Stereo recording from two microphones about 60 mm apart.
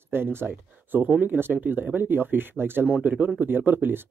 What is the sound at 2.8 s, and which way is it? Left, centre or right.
Speech, right.